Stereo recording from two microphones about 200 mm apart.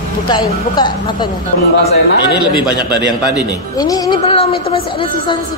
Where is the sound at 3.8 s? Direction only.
20° left (ahead or behind).